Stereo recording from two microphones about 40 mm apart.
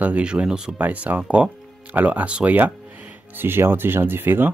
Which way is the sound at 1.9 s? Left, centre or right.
Right.